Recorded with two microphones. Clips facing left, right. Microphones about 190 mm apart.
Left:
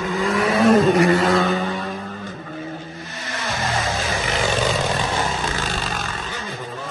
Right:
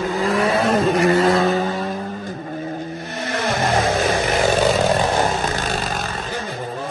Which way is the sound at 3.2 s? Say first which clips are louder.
Right 6 dB; 60° right (ahead or behind).